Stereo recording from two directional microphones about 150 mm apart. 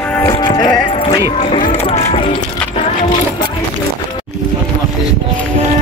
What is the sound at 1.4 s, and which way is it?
Speech, 50° left (ahead or behind).